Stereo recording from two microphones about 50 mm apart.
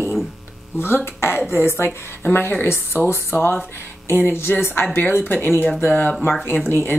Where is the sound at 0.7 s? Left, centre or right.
Left.